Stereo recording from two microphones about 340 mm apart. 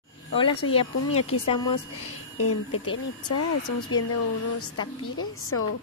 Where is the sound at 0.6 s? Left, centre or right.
Left.